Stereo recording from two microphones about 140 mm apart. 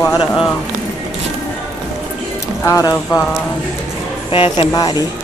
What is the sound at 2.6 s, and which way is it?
Speech, 20° left (ahead or behind).